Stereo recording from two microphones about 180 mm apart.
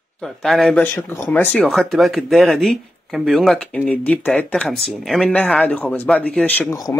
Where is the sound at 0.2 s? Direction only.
Centre (ahead or behind).